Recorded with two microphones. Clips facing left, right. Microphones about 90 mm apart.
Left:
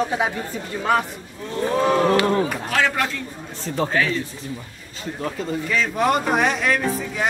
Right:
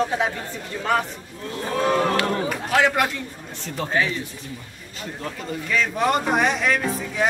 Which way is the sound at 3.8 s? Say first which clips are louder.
Left 5 dB; 30° left (ahead or behind).